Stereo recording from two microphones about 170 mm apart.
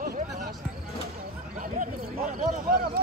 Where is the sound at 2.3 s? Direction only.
60° right (ahead or behind).